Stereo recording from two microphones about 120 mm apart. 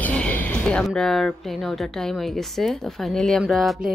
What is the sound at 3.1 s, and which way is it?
Speech, 5° left (ahead or behind).